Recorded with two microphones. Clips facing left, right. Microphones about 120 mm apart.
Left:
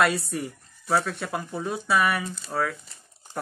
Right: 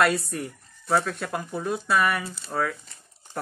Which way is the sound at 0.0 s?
Centre (ahead or behind).